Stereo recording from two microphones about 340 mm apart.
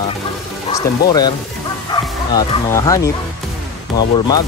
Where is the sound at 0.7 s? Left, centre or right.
Centre.